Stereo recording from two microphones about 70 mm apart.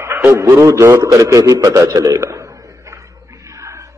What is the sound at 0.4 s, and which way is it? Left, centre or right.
A man's voice, right.